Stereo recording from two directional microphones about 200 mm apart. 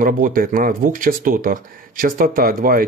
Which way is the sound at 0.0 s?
45° right (ahead or behind).